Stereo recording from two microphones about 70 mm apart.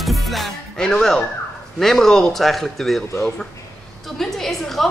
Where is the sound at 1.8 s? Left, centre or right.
Centre.